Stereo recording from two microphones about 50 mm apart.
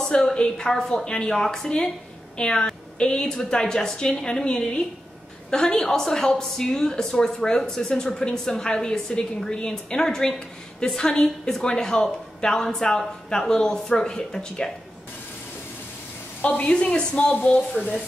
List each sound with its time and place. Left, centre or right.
0.0 s speech: centre
1.3 s a woman's voice: centre
16.4 s a woman's voice: left